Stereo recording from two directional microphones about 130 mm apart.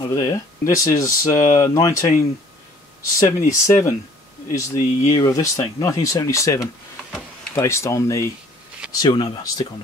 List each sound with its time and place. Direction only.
0.0 s speech: 25° left (ahead or behind)
3.2 s speech: 25° left (ahead or behind)
8.9 s speech: 35° left (ahead or behind)